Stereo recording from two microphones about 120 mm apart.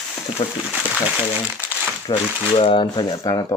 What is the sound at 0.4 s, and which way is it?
Speech, 50° left (ahead or behind).